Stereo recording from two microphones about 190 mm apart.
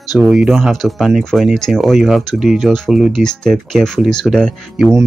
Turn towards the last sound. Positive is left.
turn(degrees=0)  # may be behind; listen again after turning